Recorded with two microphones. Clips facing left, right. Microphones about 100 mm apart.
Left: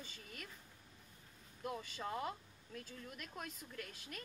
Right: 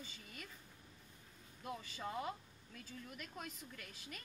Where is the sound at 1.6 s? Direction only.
5° left (ahead or behind).